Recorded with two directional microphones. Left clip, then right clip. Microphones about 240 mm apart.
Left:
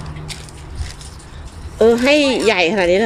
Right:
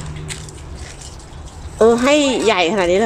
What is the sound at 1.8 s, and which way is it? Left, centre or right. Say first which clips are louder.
Speech: even; centre.